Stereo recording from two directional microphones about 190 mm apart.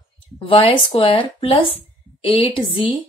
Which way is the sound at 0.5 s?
30° left (ahead or behind).